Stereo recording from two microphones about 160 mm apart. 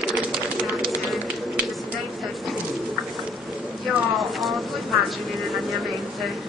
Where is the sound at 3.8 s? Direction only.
Centre (ahead or behind).